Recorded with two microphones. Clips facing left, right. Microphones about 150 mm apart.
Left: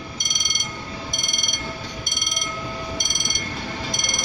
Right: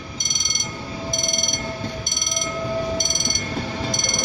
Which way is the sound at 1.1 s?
20° right (ahead or behind).